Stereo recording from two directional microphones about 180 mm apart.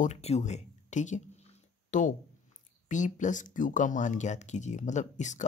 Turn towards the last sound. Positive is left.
turn(degrees=45)  # may be behind; listen again after turning